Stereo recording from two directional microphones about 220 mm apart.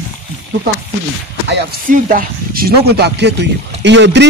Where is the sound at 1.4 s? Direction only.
45° right (ahead or behind).